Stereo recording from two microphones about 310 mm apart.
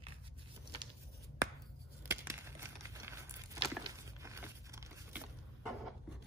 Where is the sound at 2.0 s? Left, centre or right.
Centre.